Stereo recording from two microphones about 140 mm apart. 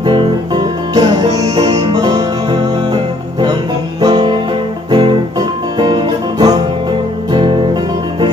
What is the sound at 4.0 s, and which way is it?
Music, 30° right (ahead or behind).